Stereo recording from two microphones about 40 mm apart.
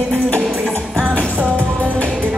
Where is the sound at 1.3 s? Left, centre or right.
Right.